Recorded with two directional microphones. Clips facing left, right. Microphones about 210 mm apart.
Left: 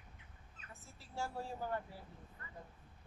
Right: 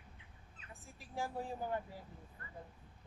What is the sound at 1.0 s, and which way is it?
Speech, 15° right (ahead or behind).